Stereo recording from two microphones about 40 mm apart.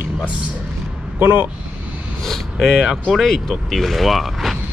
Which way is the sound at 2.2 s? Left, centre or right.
Centre.